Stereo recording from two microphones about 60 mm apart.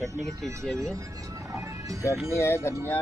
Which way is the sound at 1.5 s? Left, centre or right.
Right.